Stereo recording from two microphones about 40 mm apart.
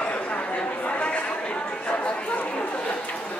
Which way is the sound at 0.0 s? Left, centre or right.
Left.